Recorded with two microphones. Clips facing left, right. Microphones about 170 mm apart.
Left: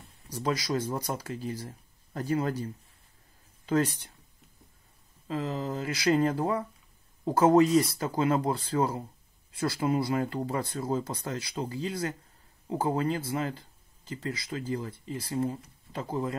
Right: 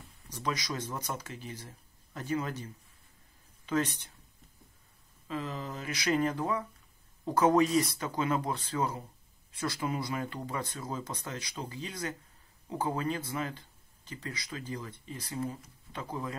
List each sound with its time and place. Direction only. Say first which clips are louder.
0.3 s speech: left 6 dB; 30° left (ahead or behind)
3.6 s speech: left 4 dB; 35° left (ahead or behind)
5.3 s speech: left 5 dB; 30° left (ahead or behind)